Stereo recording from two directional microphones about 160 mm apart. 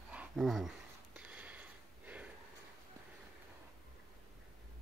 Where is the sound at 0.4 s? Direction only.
Centre (ahead or behind).